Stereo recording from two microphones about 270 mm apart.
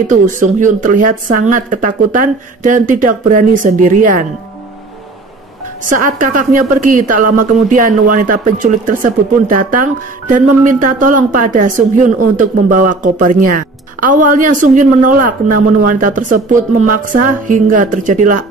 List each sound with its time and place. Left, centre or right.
0.1 s speech: right
5.9 s speech: right
7.2 s music: right
7.7 s speech: right